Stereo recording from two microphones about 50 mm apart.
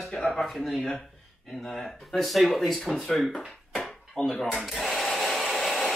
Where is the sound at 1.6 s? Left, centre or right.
Centre.